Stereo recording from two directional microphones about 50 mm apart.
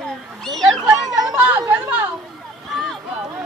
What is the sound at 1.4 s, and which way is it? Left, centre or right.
Chatter, right.